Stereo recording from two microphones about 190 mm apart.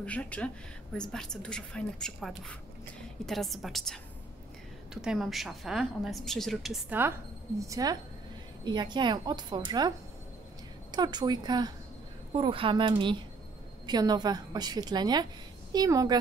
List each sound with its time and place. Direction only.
0.0 s a woman's voice: 5° left (ahead or behind); by 16.2 s 20° right (ahead or behind)